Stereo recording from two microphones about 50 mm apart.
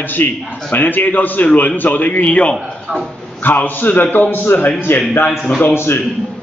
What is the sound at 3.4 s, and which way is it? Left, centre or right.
A man's voice, left.